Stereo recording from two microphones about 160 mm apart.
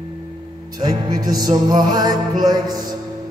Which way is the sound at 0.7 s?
25° right (ahead or behind).